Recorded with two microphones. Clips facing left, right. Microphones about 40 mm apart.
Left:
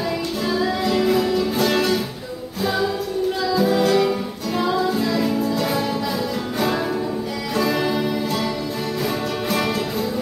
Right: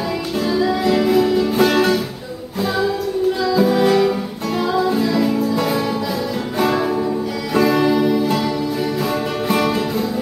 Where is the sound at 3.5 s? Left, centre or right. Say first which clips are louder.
Right 2 dB; centre.